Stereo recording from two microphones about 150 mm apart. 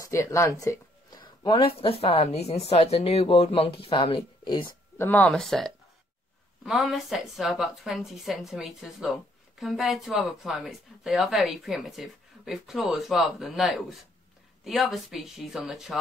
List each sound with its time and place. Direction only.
0.0 s speech: 20° left (ahead or behind)
1.4 s speech: 35° left (ahead or behind)
4.9 s speech: 15° left (ahead or behind)